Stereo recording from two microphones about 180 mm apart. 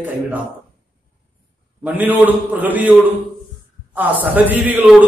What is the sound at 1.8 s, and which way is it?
A man's voice, 10° right (ahead or behind).